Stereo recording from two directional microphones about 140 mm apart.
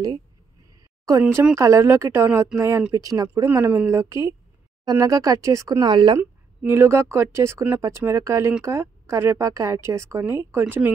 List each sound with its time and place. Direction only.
1.5 s speech: 20° right (ahead or behind)
6.1 s speech: 15° right (ahead or behind)